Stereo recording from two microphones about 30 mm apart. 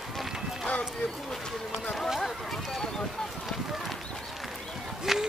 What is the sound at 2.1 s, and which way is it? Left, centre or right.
Run, centre.